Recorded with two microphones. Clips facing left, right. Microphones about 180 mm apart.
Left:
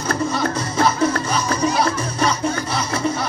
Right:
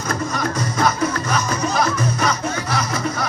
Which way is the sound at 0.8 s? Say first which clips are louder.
Left 2 dB; 30° left (ahead or behind).